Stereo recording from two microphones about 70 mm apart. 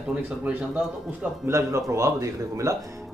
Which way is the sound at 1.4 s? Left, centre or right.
Right.